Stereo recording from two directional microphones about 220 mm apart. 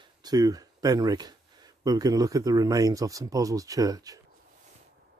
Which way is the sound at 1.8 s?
15° right (ahead or behind).